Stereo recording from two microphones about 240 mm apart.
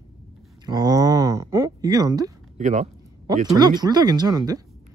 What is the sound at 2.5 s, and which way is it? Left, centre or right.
Speech, right.